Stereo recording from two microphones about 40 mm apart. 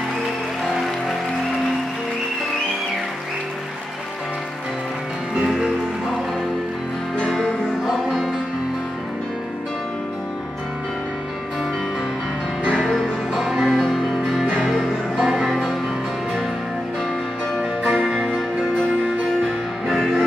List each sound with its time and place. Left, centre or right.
5.3 s music: centre
7.2 s music: centre
12.6 s music: centre
13.4 s music: centre
15.4 s music: centre
17.6 s music: right
19.4 s music: centre